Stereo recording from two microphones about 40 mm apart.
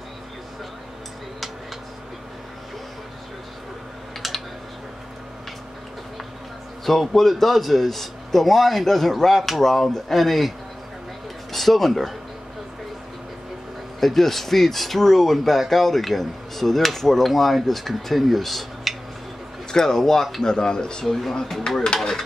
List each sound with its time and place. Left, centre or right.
6.9 s speech: centre
11.5 s speech: centre
13.9 s speech: centre
19.7 s speech: centre
20.4 s speech: centre
21.0 s speech: centre